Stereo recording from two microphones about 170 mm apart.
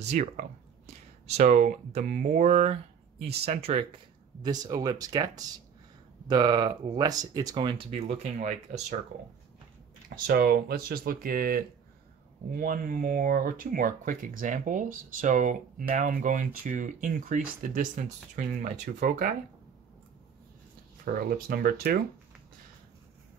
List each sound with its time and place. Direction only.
0.0 s speech: 40° right (ahead or behind)
4.4 s speech: 25° right (ahead or behind); by 8.8 s 45° right (ahead or behind)
10.0 s speech: 60° right (ahead or behind)
21.0 s speech: 55° right (ahead or behind)